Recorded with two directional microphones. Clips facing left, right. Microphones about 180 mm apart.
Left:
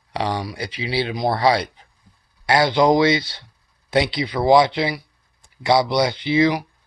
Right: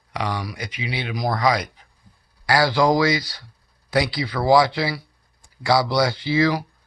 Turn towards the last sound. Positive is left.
turn(degrees=20)  # may be behind; listen again after turning